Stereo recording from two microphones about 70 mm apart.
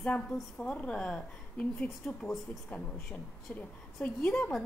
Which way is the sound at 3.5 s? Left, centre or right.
Centre.